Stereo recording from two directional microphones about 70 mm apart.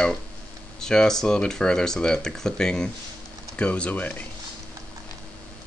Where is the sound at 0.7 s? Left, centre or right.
Centre.